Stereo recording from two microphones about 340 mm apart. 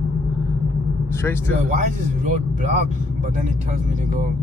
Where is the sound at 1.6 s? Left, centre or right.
Right.